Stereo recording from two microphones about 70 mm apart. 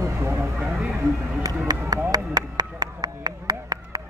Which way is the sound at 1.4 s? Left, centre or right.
Right.